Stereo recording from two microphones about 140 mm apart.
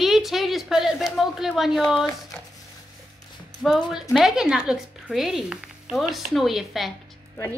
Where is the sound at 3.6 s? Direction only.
Centre (ahead or behind).